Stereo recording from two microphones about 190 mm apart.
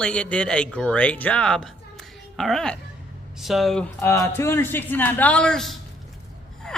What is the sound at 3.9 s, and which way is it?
A man's voice, 15° left (ahead or behind).